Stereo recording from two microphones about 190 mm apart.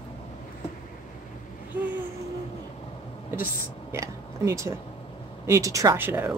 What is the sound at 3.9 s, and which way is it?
Speech, 15° right (ahead or behind).